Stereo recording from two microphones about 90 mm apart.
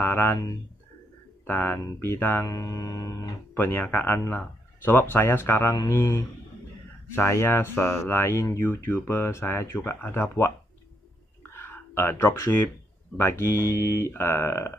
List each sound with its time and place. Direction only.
0.0 s speech: 20° left (ahead or behind)
1.4 s speech: 25° left (ahead or behind)
2.4 s speech: 35° left (ahead or behind)
3.5 s speech: 20° left (ahead or behind)
5.7 s speech: 35° left (ahead or behind)
11.5 s speech: 25° left (ahead or behind)